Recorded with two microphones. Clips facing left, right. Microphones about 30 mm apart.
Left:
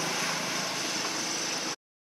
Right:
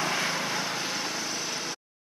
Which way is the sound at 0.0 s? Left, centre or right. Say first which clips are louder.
Right 3 dB; right.